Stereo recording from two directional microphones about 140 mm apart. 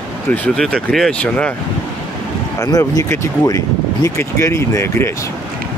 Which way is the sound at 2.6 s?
25° left (ahead or behind).